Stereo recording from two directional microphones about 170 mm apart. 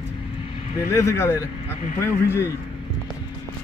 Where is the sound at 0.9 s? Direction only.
15° left (ahead or behind).